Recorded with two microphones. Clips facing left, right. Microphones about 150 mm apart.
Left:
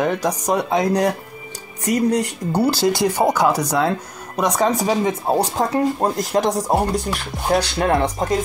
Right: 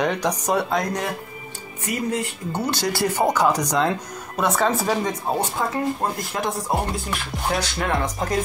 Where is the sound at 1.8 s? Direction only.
40° left (ahead or behind).